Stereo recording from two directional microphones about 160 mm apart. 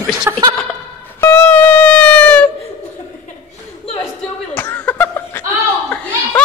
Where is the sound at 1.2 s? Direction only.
10° left (ahead or behind).